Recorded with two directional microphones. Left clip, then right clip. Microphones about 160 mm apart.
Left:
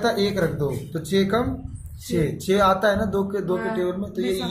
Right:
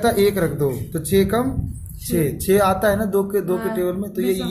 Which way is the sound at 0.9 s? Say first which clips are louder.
Right 3 dB; 35° right (ahead or behind).